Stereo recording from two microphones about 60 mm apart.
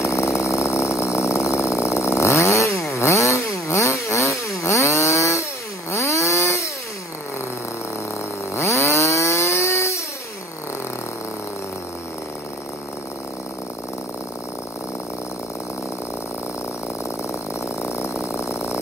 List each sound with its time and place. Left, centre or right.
0.0 s chainsaw: left
8.5 s chainsaw: left
17.8 s a sound: left